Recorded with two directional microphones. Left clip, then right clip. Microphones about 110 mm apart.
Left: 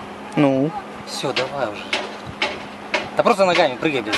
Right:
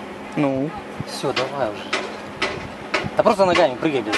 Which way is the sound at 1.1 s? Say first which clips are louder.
Even; 20° left (ahead or behind).